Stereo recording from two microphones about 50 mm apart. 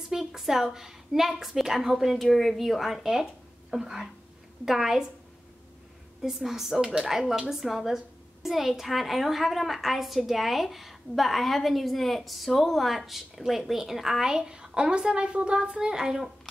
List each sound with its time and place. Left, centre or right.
0.1 s a woman's voice: centre
6.2 s speech: centre